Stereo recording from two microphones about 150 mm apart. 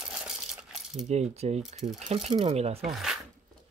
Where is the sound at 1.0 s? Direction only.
50° right (ahead or behind).